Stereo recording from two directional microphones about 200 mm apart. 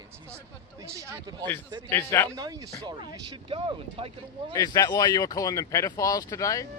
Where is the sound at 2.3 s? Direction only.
15° right (ahead or behind).